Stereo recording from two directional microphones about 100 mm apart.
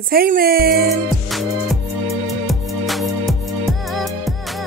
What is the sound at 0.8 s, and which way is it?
Music, centre (ahead or behind).